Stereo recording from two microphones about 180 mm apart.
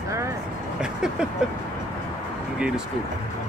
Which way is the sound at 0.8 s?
5° right (ahead or behind).